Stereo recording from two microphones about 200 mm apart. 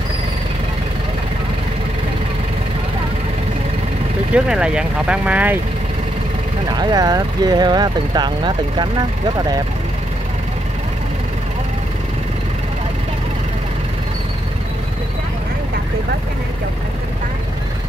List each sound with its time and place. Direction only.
4.3 s speech: 5° right (ahead or behind)
6.7 s speech: 20° right (ahead or behind)